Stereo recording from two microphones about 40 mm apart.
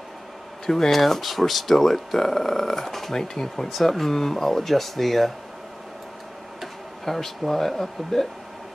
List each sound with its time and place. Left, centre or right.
0.7 s speech: centre
7.1 s speech: centre